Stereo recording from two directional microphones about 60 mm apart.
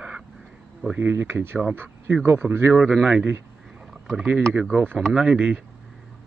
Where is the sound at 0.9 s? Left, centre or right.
Right.